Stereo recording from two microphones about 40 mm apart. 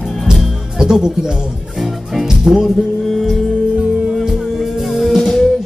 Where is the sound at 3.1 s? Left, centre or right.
Centre.